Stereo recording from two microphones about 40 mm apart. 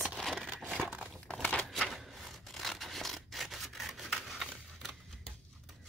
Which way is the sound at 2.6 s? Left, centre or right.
Centre.